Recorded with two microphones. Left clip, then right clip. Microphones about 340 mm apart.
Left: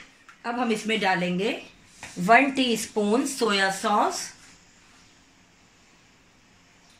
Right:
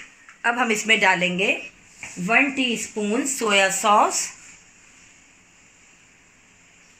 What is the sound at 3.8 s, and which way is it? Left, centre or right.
Speech, centre.